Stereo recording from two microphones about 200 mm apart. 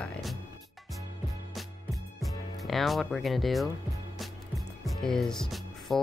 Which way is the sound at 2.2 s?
Centre (ahead or behind).